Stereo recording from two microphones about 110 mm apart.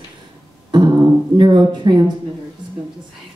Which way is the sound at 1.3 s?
45° right (ahead or behind).